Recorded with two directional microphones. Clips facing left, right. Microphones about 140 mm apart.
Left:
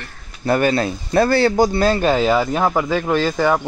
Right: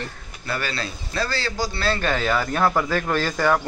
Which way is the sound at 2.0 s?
20° left (ahead or behind).